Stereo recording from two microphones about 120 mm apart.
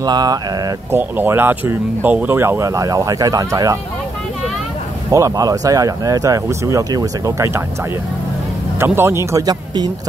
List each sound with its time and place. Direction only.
0.0 s speech: 35° right (ahead or behind)
0.9 s speech: 15° right (ahead or behind)
5.1 s speech: 30° right (ahead or behind)
8.7 s speech: 20° right (ahead or behind)